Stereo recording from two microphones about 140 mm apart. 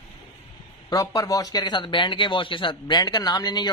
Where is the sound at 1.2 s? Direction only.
25° left (ahead or behind).